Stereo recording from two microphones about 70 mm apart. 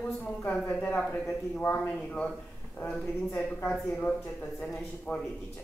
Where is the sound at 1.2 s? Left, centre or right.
Left.